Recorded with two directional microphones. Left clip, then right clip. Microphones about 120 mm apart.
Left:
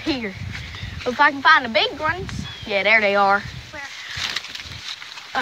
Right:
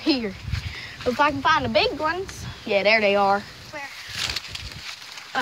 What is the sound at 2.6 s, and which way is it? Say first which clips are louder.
Speech: left 2 dB; 60° right (ahead or behind).